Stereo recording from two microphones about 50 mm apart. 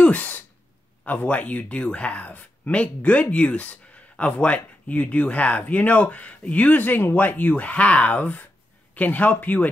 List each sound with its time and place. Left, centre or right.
0.0 s a sound: left
1.0 s speech: left
6.8 s speech: left